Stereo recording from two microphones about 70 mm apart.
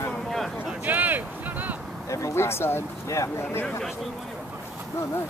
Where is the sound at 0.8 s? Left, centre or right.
Right.